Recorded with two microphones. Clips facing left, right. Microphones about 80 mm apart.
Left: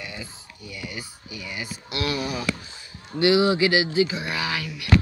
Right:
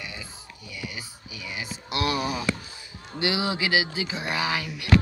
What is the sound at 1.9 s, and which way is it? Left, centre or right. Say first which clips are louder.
Speech: right 1 dB; right.